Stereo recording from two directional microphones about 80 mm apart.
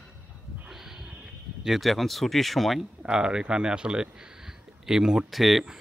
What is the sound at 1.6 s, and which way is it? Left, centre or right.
Speech, centre.